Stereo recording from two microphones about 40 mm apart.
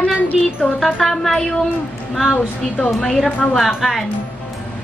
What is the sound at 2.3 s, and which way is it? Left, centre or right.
Child singing, left.